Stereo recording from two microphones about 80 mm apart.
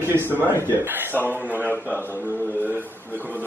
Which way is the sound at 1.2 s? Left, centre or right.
Left.